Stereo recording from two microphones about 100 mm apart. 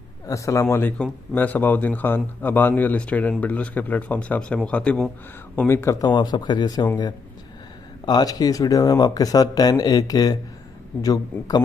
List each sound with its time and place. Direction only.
0.3 s a man's voice: 30° left (ahead or behind); by 5.1 s 10° left (ahead or behind)
5.6 s a man's voice: 20° left (ahead or behind)
6.0 s speech: 50° left (ahead or behind)
8.0 s speech: 40° left (ahead or behind)